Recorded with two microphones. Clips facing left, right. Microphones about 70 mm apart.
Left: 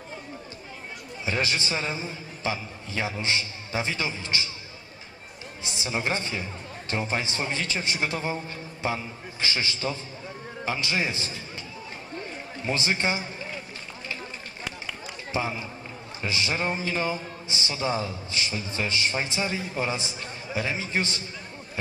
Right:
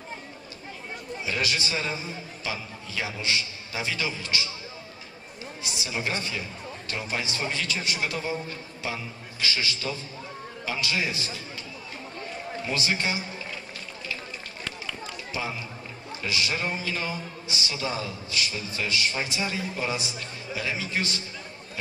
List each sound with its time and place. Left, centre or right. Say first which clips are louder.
1.2 s a man's voice: left 2 dB; left
5.6 s a man's voice: left 2 dB; left
12.6 s a man's voice: left 2 dB; left
16.2 s a man's voice: left 1 dB; left